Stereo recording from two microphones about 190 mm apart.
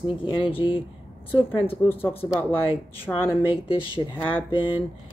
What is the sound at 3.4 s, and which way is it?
Speech, 30° left (ahead or behind).